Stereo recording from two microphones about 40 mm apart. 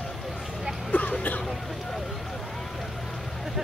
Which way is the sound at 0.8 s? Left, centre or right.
Left.